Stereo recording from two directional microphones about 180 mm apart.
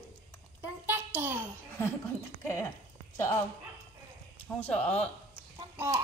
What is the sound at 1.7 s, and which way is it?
Speech, 15° left (ahead or behind).